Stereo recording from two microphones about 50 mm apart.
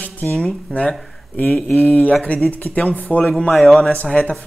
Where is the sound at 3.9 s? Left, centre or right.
Left.